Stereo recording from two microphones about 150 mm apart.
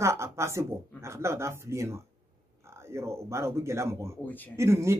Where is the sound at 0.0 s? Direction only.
20° right (ahead or behind).